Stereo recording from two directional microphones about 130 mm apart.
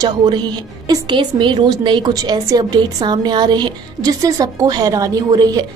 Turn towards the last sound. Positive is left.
turn(degrees=-30)  # may be behind; listen again after turning